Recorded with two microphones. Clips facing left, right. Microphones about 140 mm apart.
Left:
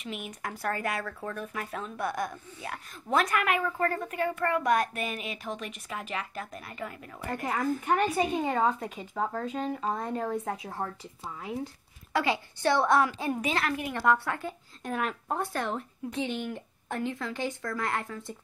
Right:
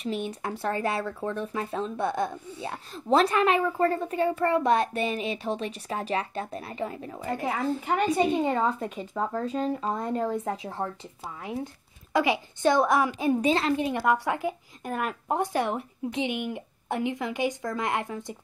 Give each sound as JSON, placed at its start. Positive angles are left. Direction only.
{"t": 0.0, "sound": "speech", "side_deg": -30}
{"t": 12.1, "sound": "speech", "side_deg": -15}
{"t": 13.4, "sound": "speech", "side_deg": -25}
{"t": 14.0, "sound": "speech", "side_deg": -15}
{"t": 14.9, "sound": "speech", "side_deg": -5}
{"t": 15.2, "sound": "speech", "side_deg": -15}